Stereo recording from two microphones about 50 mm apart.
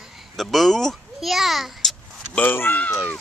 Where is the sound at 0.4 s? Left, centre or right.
Centre.